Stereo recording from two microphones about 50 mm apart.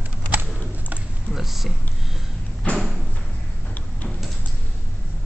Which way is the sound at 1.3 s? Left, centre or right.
Centre.